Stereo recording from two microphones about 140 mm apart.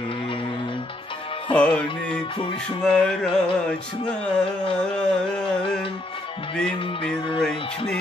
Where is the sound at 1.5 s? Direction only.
10° left (ahead or behind).